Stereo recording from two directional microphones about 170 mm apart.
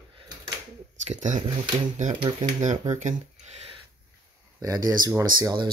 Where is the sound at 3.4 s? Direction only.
40° right (ahead or behind).